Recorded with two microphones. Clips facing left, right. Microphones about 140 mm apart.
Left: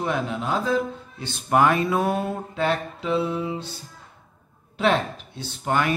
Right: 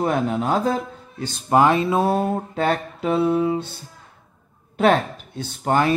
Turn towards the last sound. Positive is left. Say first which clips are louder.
# right 4 dB
turn(degrees=-40)  # may be behind; listen again after turning